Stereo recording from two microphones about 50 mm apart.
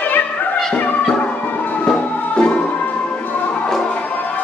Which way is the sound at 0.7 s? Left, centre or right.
Left.